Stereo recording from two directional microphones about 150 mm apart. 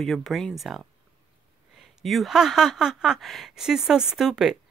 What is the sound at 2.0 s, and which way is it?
Speech, centre (ahead or behind).